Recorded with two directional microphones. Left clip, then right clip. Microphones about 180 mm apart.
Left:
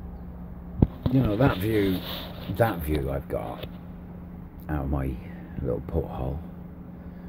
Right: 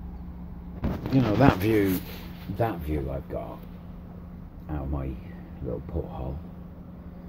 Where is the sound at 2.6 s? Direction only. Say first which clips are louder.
Left 4 dB; 45° left (ahead or behind).